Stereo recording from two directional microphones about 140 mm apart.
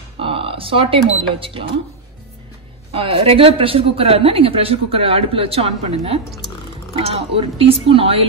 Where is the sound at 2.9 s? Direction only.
45° right (ahead or behind).